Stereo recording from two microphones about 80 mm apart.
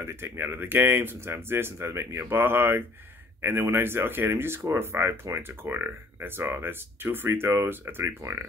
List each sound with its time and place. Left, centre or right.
0.0 s speech: right